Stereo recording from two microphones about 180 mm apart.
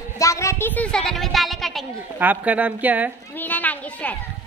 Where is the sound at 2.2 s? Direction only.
10° right (ahead or behind).